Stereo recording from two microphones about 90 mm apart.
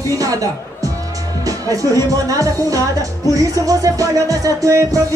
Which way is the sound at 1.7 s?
40° right (ahead or behind).